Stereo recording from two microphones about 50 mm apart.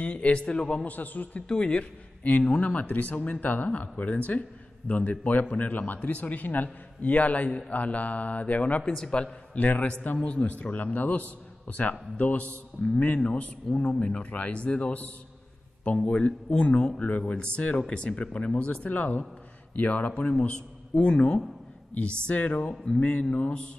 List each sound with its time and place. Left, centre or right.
0.0 s speech: left
0.8 s a man's voice: left
1.5 s a man's voice: left
8.9 s a man's voice: centre
12.8 s a man's voice: centre
17.0 s a man's voice: left